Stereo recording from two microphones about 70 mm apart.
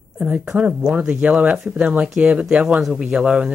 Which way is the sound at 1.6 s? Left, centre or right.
Centre.